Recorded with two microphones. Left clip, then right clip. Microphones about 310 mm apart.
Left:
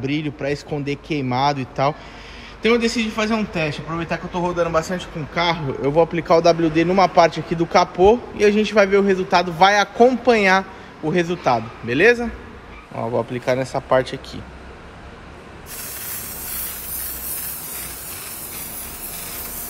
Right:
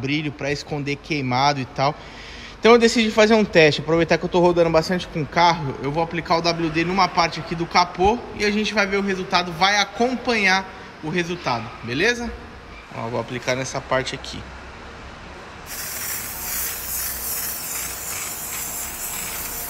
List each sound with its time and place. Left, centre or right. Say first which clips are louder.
0.0 s speech: left 1 dB; centre
4.6 s speech: right 2 dB; centre
5.3 s speech: right 3 dB; centre